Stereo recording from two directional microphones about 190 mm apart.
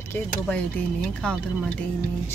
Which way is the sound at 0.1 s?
5° left (ahead or behind).